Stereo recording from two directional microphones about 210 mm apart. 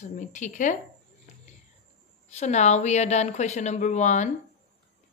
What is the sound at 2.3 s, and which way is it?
A woman's voice, 35° left (ahead or behind).